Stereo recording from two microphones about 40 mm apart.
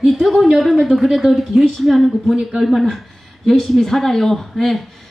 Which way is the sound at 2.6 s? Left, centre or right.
Centre.